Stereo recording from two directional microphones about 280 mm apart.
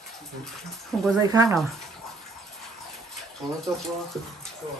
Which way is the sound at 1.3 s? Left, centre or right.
Centre.